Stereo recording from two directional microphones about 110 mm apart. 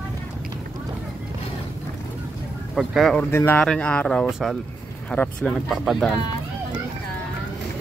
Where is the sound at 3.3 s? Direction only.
25° left (ahead or behind).